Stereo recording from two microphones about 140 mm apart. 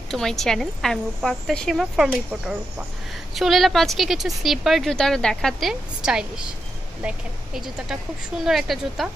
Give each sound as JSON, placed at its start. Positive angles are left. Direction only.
{"t": 0.1, "sound": "speech", "side_deg": 0}